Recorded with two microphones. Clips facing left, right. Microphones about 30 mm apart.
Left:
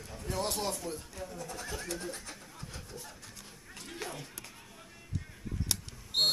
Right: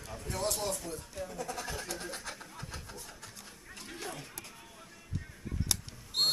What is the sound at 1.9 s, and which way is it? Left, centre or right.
Speech, right.